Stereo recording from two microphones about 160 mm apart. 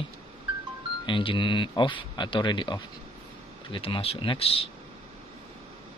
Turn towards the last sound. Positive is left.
turn(degrees=35)  # may be behind; listen again after turning